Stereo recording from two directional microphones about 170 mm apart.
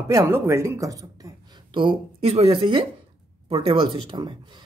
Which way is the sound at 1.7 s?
35° right (ahead or behind).